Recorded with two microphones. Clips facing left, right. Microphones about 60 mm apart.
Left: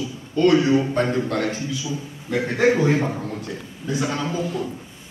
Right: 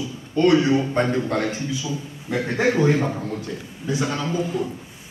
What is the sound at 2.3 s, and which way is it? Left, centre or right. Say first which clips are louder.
A man's voice: left 2 dB; centre.